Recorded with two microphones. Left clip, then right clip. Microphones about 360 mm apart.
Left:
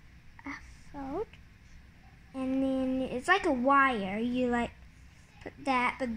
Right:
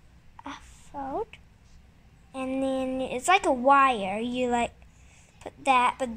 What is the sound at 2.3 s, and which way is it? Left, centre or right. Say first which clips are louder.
A woman's voice: right 3 dB; right.